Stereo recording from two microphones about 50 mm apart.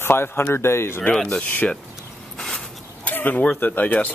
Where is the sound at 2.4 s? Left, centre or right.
Centre.